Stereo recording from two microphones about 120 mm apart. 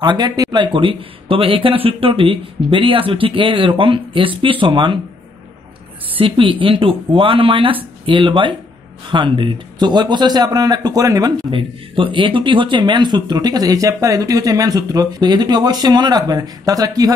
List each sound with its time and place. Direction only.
0.0 s speech: 40° right (ahead or behind)
6.1 s speech: 45° right (ahead or behind)
11.5 s speech: 45° right (ahead or behind); by 17.1 s 30° right (ahead or behind)